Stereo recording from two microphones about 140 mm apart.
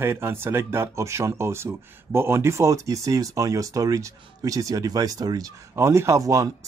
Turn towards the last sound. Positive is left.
turn(degrees=-25)  # may be behind; listen again after turning